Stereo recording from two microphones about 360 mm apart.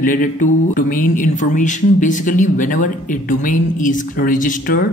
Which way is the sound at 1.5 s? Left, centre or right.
Left.